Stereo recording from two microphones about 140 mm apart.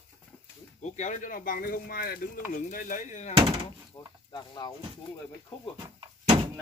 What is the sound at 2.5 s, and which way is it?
Speech, 70° left (ahead or behind).